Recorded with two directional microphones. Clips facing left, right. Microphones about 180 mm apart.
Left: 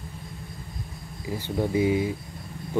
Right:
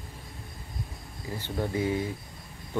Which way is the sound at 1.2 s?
10° left (ahead or behind).